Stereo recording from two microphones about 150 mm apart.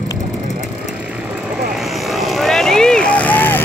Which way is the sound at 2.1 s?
Centre (ahead or behind).